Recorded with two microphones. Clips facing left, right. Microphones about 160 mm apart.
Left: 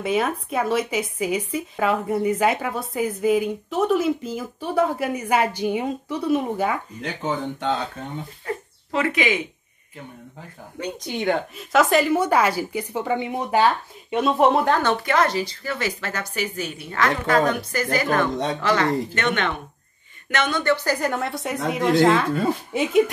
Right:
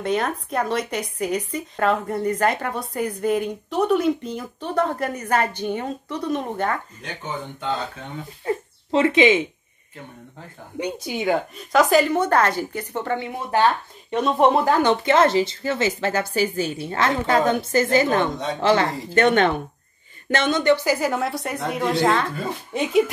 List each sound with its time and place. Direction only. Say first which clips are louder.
0.0 s speech: left 1 dB; 5° left (ahead or behind)
7.0 s speech: left 5 dB; 90° left
8.5 s a sound: right 7 dB; 25° right (ahead or behind)
10.8 s a woman's voice: right 1 dB; 5° right (ahead or behind); by 13.7 s 15° left (ahead or behind)
14.1 s speech: even; centre (ahead or behind)
14.8 s a woman's voice: right 4 dB; 20° right (ahead or behind); by 23.0 s centre (ahead or behind)